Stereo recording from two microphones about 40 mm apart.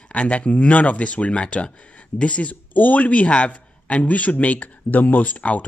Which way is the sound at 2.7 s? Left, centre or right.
Left.